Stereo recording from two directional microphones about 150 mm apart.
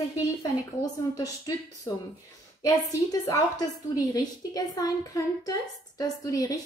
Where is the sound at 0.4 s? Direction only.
20° left (ahead or behind).